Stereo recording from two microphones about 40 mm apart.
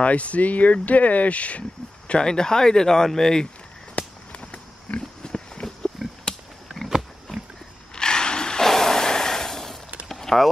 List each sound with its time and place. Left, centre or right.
0.0 s speech: left
2.0 s speech: left
3.9 s a sound: left
6.2 s wild animals: centre
7.9 s ratchet: centre
8.6 s gasp: centre
10.0 s a sound: centre